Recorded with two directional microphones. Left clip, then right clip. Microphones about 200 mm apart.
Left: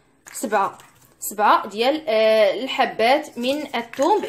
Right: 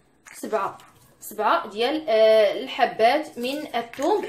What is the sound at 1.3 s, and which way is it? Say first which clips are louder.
Speech: left 5 dB; 40° left (ahead or behind).